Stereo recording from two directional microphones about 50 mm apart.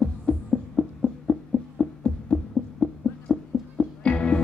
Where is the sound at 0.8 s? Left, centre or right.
Centre.